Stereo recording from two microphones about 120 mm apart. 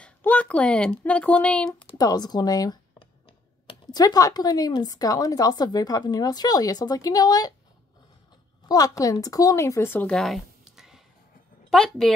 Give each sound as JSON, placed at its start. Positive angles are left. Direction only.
{"t": 0.0, "sound": "speech", "side_deg": 10}
{"t": 2.0, "sound": "a woman's voice", "side_deg": 35}
{"t": 3.8, "sound": "a woman's voice", "side_deg": 35}
{"t": 8.6, "sound": "a woman's voice", "side_deg": 30}
{"t": 10.0, "sound": "a sound", "side_deg": 0}
{"t": 11.7, "sound": "a woman's voice", "side_deg": 0}